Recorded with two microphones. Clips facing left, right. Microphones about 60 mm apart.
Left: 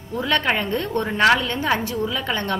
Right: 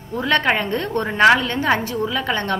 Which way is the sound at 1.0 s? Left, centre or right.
Centre.